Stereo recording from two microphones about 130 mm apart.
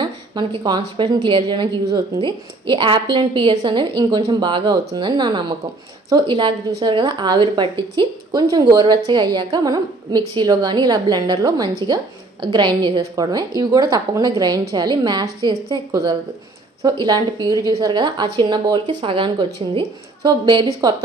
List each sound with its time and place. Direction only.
0.0 s a woman's voice: 35° right (ahead or behind)